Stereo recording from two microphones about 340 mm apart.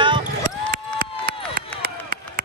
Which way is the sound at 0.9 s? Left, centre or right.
Right.